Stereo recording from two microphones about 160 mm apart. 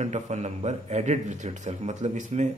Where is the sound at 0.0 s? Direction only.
45° right (ahead or behind).